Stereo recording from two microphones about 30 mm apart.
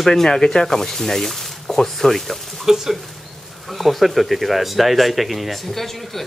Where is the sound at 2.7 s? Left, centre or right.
Centre.